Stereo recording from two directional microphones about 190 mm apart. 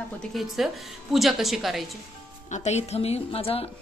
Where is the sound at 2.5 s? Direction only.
35° left (ahead or behind).